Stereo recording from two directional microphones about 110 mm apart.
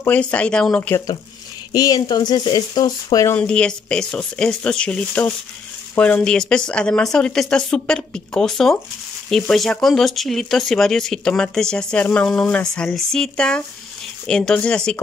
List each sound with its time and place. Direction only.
0.0 s a woman's voice: 15° left (ahead or behind)
1.7 s speech: 35° left (ahead or behind)
3.3 s a woman's voice: 10° left (ahead or behind)